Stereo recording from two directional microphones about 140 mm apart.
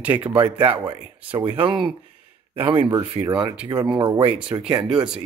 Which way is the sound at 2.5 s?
35° right (ahead or behind).